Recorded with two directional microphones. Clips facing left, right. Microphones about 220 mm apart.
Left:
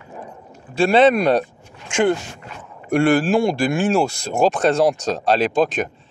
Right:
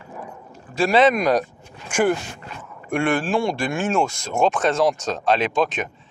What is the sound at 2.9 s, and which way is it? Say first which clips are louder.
Speech: left 5 dB; 40° left (ahead or behind).